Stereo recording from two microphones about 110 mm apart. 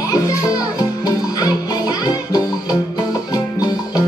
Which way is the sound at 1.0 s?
35° left (ahead or behind).